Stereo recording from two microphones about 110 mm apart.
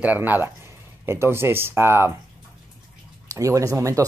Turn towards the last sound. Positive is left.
turn(degrees=-30)  # may be behind; listen again after turning